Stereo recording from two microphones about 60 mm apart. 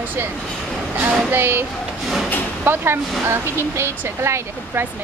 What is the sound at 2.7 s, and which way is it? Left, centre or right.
Speech, right.